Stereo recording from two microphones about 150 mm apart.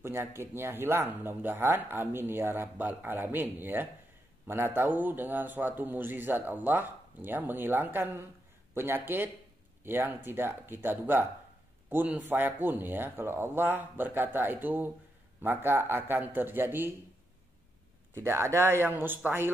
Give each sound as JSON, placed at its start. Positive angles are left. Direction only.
{"t": 0.0, "sound": "speech", "side_deg": -15}
{"t": 18.1, "sound": "speech", "side_deg": -15}